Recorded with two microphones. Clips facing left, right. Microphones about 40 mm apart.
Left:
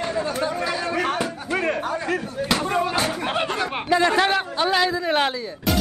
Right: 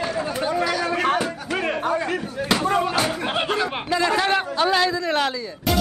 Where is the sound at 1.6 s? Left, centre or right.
Centre.